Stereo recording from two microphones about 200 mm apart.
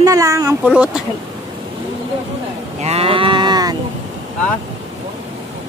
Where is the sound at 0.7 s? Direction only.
5° right (ahead or behind).